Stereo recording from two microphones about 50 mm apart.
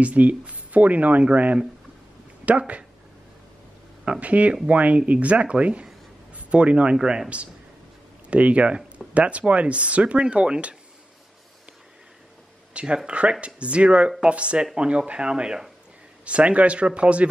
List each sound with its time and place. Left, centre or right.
0.0 s speech: right
4.0 s a man's voice: right
7.0 s a man's voice: centre
8.3 s speech: right
12.7 s speech: right